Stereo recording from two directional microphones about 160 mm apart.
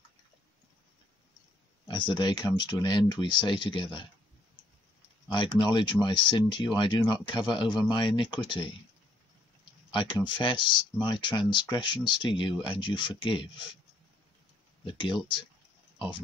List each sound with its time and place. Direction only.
1.9 s speech: 30° left (ahead or behind)
5.3 s speech: 30° left (ahead or behind)
9.8 s speech: 30° left (ahead or behind)
14.9 s speech: 30° left (ahead or behind)